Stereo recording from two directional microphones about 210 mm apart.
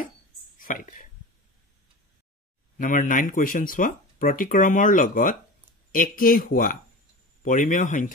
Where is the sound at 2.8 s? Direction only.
40° left (ahead or behind).